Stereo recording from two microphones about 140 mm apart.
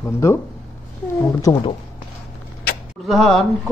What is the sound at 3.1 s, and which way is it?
Speech, centre (ahead or behind).